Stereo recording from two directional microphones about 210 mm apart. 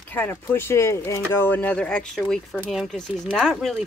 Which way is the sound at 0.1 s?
10° left (ahead or behind).